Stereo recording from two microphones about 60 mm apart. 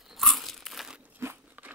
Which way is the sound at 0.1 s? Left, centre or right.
Centre.